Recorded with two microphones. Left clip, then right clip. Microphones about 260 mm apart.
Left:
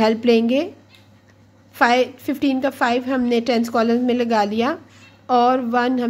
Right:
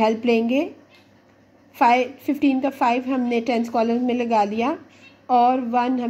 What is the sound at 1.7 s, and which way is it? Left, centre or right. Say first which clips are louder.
A woman's voice: left 1 dB; centre.